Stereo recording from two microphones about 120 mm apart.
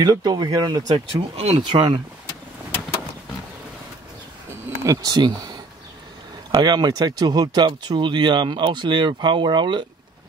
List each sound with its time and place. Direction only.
0.0 s speech: 35° right (ahead or behind)
0.9 s speech: 55° right (ahead or behind)
4.5 s a sound: 25° right (ahead or behind)
6.5 s speech: 35° right (ahead or behind)